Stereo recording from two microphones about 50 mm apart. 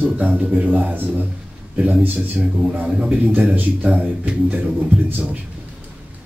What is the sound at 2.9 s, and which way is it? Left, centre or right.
Speech, right.